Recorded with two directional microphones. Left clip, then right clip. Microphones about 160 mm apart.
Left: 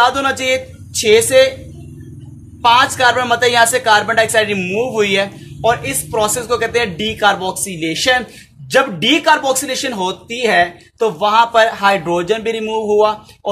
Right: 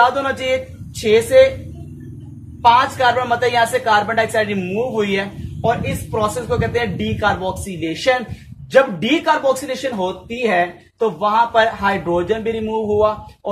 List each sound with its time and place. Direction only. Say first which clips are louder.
0.0 s a woman's voice: left 2 dB; 35° left (ahead or behind)
2.6 s a woman's voice: left 2 dB; 35° left (ahead or behind)